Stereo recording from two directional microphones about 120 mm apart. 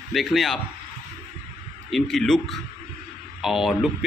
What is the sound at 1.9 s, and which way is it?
Speech, centre (ahead or behind).